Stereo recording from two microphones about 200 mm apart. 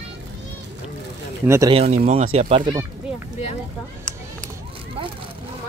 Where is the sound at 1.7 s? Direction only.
30° right (ahead or behind).